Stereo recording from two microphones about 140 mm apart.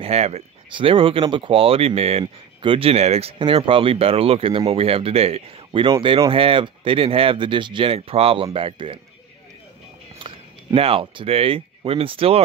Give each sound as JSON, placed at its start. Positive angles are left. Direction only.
{"t": 0.0, "sound": "speech", "side_deg": -50}
{"t": 0.7, "sound": "speech", "side_deg": -35}
{"t": 10.1, "sound": "speech", "side_deg": -40}